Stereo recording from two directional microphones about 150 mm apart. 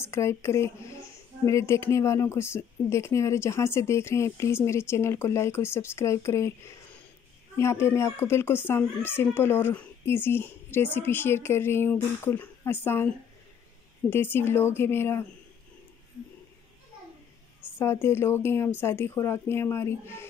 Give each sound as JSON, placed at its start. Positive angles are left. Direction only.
{"t": 0.0, "sound": "a woman's voice", "side_deg": 15}
{"t": 14.1, "sound": "a woman's voice", "side_deg": 15}
{"t": 17.7, "sound": "a woman's voice", "side_deg": 15}